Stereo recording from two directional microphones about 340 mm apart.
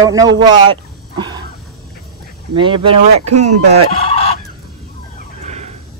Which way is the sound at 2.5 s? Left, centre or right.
Centre.